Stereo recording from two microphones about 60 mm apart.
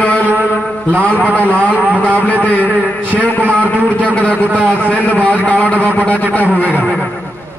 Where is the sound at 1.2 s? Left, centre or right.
Right.